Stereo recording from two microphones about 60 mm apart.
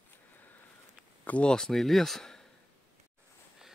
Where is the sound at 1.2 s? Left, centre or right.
Left.